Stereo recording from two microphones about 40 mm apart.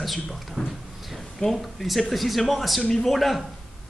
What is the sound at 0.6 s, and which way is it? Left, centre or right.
Speech, centre.